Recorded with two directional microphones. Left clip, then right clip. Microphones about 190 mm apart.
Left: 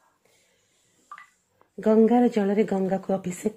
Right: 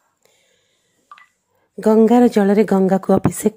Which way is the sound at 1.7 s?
20° right (ahead or behind).